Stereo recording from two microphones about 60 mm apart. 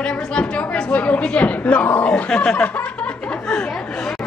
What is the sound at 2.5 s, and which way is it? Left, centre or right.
Snicker, left.